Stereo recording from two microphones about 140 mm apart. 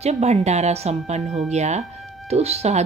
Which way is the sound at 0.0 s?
50° right (ahead or behind).